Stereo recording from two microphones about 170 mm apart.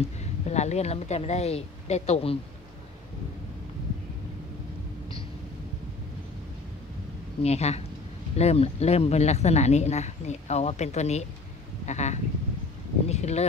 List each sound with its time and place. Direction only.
0.2 s a woman's voice: 40° left (ahead or behind)
7.4 s speech: 40° left (ahead or behind)